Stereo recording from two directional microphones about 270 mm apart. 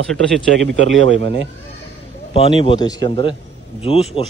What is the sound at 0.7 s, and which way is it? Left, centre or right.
Speech, right.